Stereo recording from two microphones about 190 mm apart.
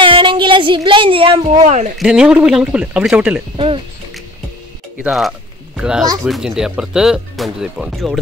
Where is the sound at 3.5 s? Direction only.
25° right (ahead or behind).